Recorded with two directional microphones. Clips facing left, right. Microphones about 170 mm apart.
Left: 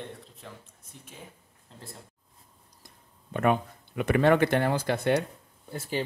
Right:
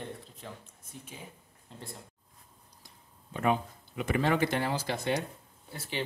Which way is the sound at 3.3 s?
60° left (ahead or behind).